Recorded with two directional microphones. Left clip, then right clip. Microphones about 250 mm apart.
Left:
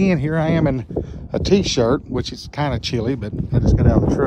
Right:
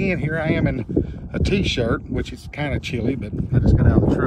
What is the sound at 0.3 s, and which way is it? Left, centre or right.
Speech, left.